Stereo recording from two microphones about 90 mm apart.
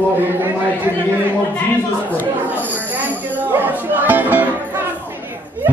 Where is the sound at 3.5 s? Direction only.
20° right (ahead or behind).